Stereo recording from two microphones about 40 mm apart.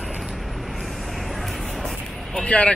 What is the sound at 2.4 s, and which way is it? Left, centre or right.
Speech, left.